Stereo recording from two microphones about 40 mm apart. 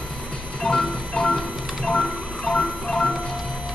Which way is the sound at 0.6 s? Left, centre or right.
Centre.